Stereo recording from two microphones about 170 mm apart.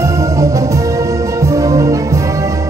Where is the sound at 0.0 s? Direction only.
20° right (ahead or behind).